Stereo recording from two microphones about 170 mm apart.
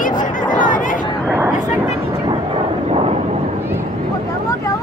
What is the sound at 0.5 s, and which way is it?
Chatter, 50° left (ahead or behind).